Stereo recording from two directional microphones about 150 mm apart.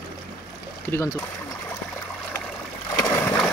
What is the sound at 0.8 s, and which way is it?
Speech, 20° left (ahead or behind).